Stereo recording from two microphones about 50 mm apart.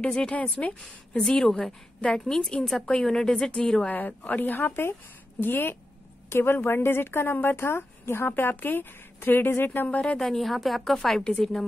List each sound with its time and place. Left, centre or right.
0.0 s a woman's voice: centre
1.1 s a woman's voice: centre
3.9 s speech: left
4.6 s a woman's voice: left
10.0 s a woman's voice: centre